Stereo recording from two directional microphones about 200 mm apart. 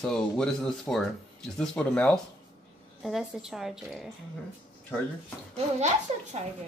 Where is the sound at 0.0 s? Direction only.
5° left (ahead or behind).